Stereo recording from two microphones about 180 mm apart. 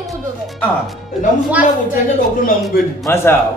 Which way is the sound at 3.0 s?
15° left (ahead or behind).